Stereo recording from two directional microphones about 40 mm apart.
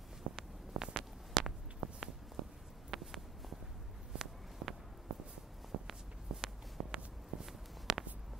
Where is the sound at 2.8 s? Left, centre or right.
Centre.